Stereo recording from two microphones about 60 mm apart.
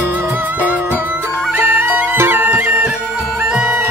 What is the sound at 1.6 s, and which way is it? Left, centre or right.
Music, right.